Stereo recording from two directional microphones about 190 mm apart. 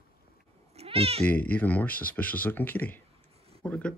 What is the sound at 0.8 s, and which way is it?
Cat, 30° right (ahead or behind).